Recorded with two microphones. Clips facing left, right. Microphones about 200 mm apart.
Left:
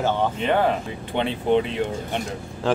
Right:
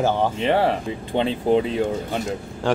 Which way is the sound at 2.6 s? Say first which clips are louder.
Right 1 dB; centre (ahead or behind).